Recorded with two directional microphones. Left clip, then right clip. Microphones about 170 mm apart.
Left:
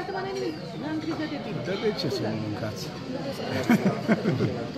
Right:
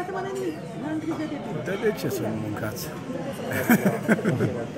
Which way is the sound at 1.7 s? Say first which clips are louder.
Right 2 dB; centre (ahead or behind).